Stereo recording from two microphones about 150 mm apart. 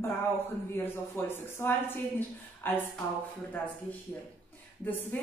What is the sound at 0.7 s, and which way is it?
A woman's voice, 15° left (ahead or behind).